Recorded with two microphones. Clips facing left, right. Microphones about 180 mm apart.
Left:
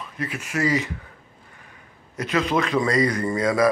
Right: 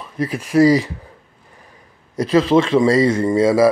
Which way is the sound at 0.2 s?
35° right (ahead or behind).